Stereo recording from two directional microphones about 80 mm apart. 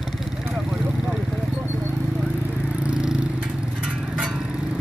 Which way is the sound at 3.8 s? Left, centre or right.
Centre.